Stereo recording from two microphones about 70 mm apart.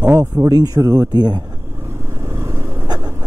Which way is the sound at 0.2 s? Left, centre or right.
Right.